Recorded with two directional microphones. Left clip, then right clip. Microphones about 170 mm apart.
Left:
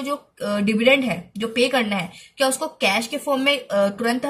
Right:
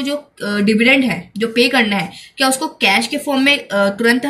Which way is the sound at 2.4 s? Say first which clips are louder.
Right 5 dB; 25° left (ahead or behind).